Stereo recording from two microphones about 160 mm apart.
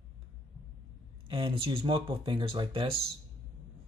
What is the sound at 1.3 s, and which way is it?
Speech, 30° right (ahead or behind).